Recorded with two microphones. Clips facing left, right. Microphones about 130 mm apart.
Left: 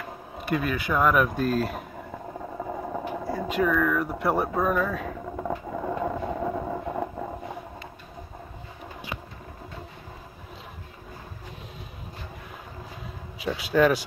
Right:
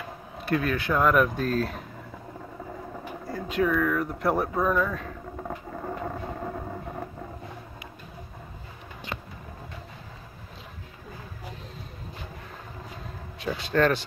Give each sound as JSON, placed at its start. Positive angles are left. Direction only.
{"t": 0.4, "sound": "speech", "side_deg": 5}
{"t": 2.5, "sound": "a sound", "side_deg": 60}
{"t": 3.5, "sound": "speech", "side_deg": 0}
{"t": 5.3, "sound": "vehicle", "side_deg": 90}
{"t": 13.4, "sound": "a man's voice", "side_deg": 5}